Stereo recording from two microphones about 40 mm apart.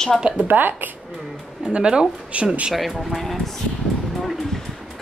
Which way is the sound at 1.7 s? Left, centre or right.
Right.